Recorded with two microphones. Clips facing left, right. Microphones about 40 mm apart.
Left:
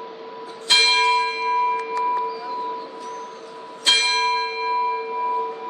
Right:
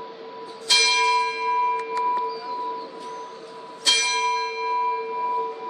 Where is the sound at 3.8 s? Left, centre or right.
Left.